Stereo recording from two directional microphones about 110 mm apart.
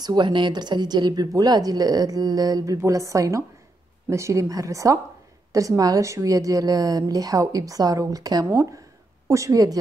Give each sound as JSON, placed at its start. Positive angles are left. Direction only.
{"t": 0.0, "sound": "a woman's voice", "side_deg": -45}